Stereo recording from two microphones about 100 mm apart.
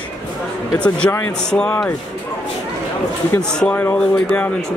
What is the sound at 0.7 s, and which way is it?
Speech, 10° left (ahead or behind).